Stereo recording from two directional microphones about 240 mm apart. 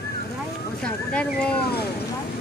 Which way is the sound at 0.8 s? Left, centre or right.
Centre.